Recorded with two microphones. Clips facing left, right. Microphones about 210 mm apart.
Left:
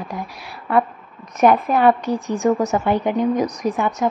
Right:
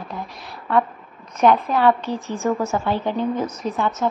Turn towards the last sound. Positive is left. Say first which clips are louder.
# left 2 dB
turn(degrees=15)  # may be behind; listen again after turning